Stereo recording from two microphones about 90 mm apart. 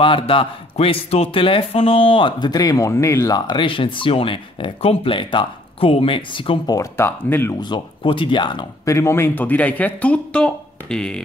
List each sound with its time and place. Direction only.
0.0 s speech: 85° left; by 3.3 s 30° left (ahead or behind)
3.3 s speech: 65° left (ahead or behind)
6.6 s speech: 45° left (ahead or behind)
7.0 s speech: 25° left (ahead or behind)
7.6 s speech: 65° left (ahead or behind)
8.8 s a man's voice: 30° left (ahead or behind); by 11.2 s 5° left (ahead or behind)